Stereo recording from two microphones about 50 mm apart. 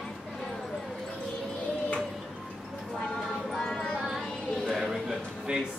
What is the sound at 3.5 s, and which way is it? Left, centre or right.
Music, centre.